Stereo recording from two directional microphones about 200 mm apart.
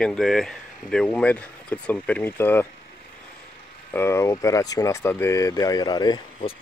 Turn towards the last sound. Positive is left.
turn(degrees=25)  # may be behind; listen again after turning